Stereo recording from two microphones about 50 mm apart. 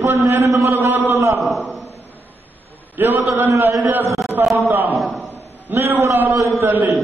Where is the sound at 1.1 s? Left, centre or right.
Right.